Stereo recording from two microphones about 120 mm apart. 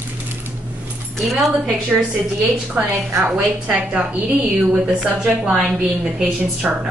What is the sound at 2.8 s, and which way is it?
A woman's voice, 20° right (ahead or behind).